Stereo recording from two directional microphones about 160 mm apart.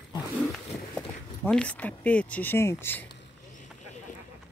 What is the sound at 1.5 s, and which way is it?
Speech, 5° left (ahead or behind).